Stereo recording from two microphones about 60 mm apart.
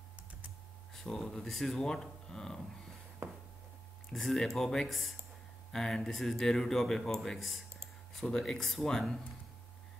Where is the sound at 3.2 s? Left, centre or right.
Right.